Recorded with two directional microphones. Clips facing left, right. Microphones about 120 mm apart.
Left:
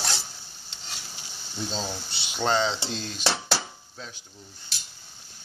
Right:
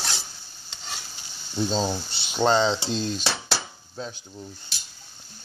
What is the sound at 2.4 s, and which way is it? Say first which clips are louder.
Cutlery: right 4 dB; 25° right (ahead or behind).